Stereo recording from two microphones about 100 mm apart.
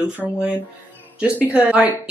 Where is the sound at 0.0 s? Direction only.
15° right (ahead or behind).